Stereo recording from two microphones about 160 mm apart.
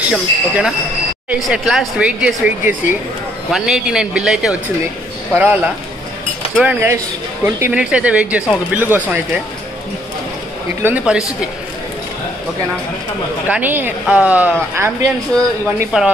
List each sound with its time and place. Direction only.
0.1 s a man's voice: 5° right (ahead or behind)
10.8 s speech: 10° right (ahead or behind)
13.5 s speech: 10° right (ahead or behind)
15.9 s speech: 5° right (ahead or behind)